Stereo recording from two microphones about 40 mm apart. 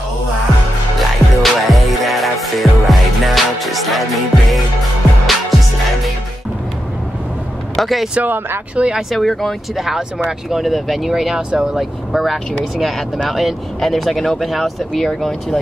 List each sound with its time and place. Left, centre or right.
0.9 s music: centre
7.7 s speech: centre
8.8 s speech: right
9.1 s speech: centre
9.8 s speech: centre
12.1 s speech: centre
13.7 s speech: centre